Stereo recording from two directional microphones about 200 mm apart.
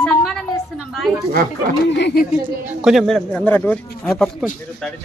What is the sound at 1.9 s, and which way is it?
Speech, 60° left (ahead or behind).